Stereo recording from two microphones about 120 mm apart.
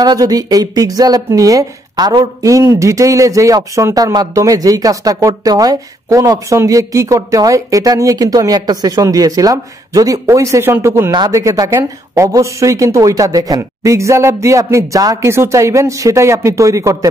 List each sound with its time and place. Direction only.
0.0 s a woman's voice: 30° right (ahead or behind)
11.1 s a woman's voice: 35° right (ahead or behind)